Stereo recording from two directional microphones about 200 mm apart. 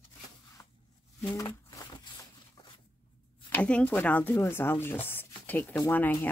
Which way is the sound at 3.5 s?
5° left (ahead or behind).